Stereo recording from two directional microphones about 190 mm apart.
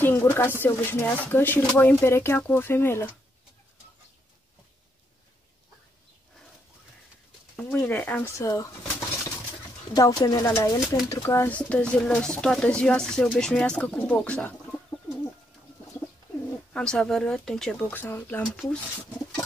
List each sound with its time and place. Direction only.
0.0 s speech: 10° left (ahead or behind)
7.5 s speech: 10° left (ahead or behind)
9.9 s speech: 20° left (ahead or behind)
16.7 s speech: 5° left (ahead or behind)